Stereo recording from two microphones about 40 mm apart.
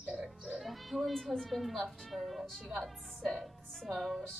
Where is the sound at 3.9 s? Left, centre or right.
Centre.